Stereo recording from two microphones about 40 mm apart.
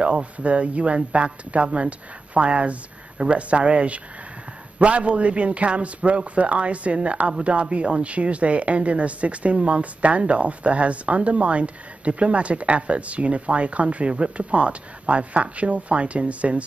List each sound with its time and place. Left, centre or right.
0.0 s speech: right